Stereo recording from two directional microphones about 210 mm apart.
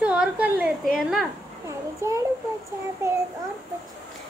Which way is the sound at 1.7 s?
15° right (ahead or behind).